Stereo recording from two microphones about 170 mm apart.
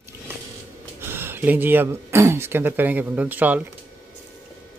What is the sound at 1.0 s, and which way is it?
Speech, 15° right (ahead or behind).